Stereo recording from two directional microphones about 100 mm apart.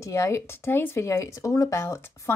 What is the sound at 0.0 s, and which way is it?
Speech, 30° left (ahead or behind).